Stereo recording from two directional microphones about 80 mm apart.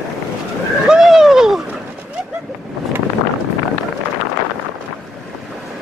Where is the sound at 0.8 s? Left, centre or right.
Centre.